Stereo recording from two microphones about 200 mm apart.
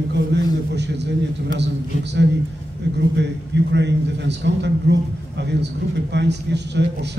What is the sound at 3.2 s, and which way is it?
A man's voice, 60° right (ahead or behind).